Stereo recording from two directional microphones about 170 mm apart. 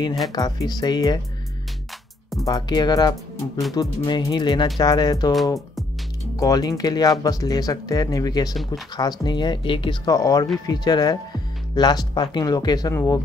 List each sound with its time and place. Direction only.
0.3 s speech: 25° left (ahead or behind)
2.4 s speech: 25° left (ahead or behind)
6.4 s speech: 20° left (ahead or behind)